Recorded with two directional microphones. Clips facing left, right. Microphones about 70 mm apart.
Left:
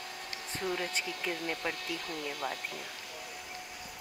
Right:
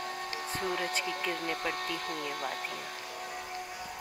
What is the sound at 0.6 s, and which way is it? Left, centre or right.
Speech, right.